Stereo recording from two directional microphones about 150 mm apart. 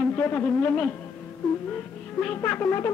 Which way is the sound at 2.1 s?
10° left (ahead or behind).